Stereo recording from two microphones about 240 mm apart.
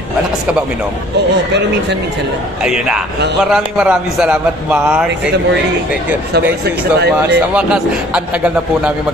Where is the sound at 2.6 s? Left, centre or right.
Centre.